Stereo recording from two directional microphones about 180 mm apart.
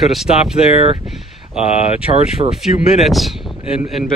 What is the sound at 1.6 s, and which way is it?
Speech, 35° left (ahead or behind).